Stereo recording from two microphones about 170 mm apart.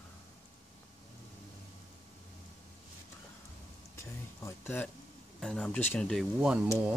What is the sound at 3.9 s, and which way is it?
Speech, 15° left (ahead or behind).